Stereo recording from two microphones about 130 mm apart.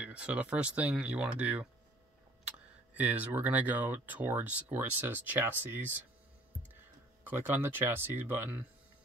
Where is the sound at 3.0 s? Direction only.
15° right (ahead or behind).